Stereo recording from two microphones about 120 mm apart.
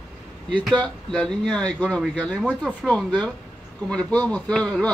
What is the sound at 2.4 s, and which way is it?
Speech, 10° right (ahead or behind).